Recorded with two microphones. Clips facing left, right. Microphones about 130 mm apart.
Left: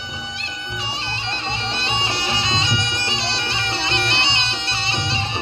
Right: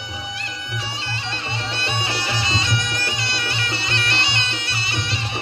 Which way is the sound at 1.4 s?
25° left (ahead or behind).